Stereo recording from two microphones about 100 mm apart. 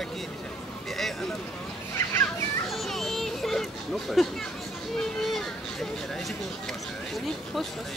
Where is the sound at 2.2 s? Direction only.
Centre (ahead or behind).